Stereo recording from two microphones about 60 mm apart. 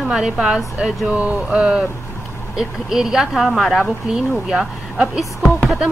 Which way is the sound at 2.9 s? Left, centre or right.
Centre.